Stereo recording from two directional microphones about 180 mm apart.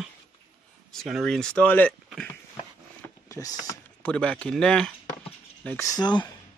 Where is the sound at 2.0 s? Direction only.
Centre (ahead or behind).